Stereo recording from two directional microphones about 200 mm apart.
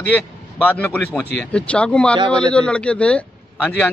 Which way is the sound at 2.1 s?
25° right (ahead or behind).